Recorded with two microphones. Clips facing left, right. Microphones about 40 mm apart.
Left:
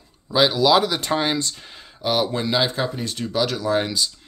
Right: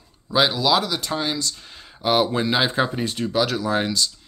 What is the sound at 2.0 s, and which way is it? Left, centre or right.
Speech, centre.